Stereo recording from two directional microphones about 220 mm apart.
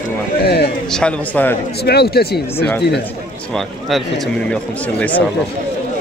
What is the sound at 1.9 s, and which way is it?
Speech, 45° left (ahead or behind).